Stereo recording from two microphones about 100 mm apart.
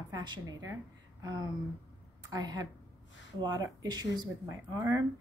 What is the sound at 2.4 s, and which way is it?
Speech, 40° right (ahead or behind).